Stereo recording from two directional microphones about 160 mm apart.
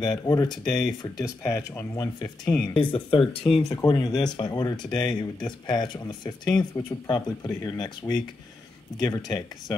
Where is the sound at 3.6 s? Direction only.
25° left (ahead or behind).